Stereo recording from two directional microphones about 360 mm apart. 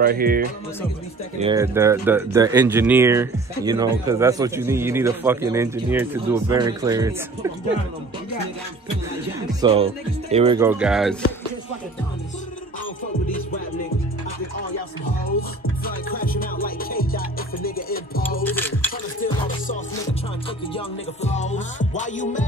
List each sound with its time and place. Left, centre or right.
0.0 s speech: right
1.4 s speech: centre
9.6 s speech: centre
15.8 s music: left
18.4 s music: centre
20.7 s music: centre